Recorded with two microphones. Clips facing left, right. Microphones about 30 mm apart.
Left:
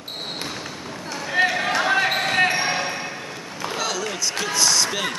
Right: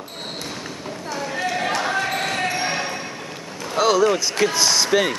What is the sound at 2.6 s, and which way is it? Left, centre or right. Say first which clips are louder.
Basketball bounce: even; centre.